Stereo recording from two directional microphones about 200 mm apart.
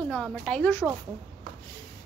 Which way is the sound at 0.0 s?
5° left (ahead or behind).